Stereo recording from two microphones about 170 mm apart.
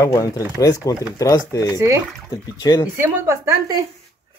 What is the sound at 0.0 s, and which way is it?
Speech, 20° left (ahead or behind).